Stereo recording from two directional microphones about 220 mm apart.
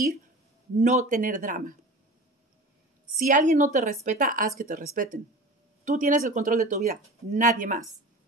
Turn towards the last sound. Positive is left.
turn(degrees=-35)  # may be behind; listen again after turning